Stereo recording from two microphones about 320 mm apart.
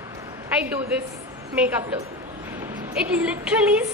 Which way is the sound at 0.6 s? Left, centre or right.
Centre.